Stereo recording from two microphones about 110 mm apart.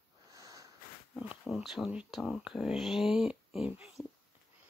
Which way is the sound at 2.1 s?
Centre (ahead or behind).